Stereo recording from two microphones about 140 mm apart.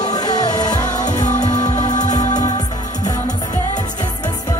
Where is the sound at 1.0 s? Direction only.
60° left (ahead or behind).